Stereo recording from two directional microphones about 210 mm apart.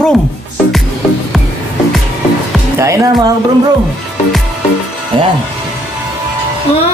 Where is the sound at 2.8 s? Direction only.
15° right (ahead or behind).